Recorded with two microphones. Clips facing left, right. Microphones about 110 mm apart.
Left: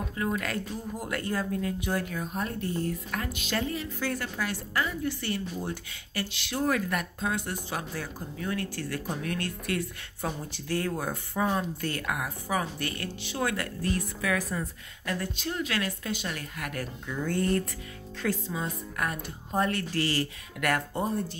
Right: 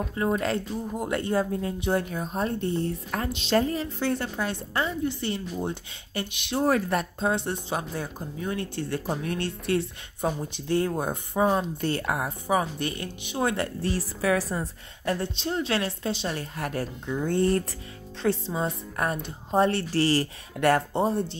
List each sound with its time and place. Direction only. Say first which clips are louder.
0.1 s speech: right 5 dB; 30° right (ahead or behind)
6.6 s speech: right 4 dB; 30° right (ahead or behind)